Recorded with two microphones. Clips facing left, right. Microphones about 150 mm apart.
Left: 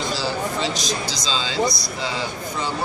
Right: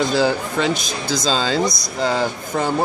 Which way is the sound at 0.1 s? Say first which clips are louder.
Right 6 dB; 55° right (ahead or behind).